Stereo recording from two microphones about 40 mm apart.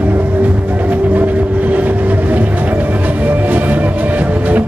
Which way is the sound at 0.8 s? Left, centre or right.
Right.